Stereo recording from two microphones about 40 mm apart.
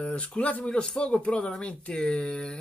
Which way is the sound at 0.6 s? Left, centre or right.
Left.